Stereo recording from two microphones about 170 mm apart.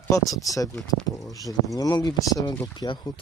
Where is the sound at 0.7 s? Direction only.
Centre (ahead or behind).